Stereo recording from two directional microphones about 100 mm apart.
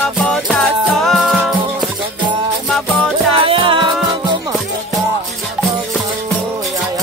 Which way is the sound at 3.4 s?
60° right (ahead or behind).